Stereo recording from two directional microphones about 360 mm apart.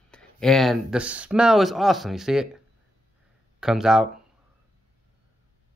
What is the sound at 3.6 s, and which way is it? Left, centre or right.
Speech, centre.